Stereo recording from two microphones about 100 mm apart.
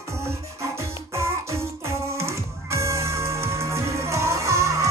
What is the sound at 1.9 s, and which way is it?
Music, 30° right (ahead or behind).